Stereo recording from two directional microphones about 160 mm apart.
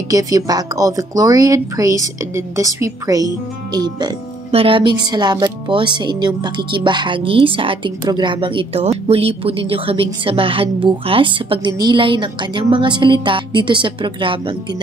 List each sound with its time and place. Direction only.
0.1 s a woman's voice: 20° right (ahead or behind)
4.5 s speech: 35° right (ahead or behind)